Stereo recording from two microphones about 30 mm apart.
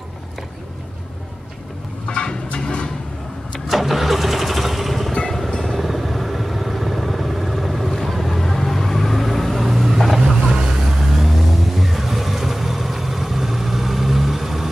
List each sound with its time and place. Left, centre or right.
2.0 s a sound: left
3.6 s vehicle: centre
9.9 s boat: centre
10.2 s vehicle: centre
11.2 s vehicle: centre